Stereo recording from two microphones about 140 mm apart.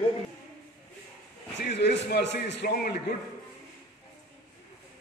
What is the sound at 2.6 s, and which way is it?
Speech, 90° left.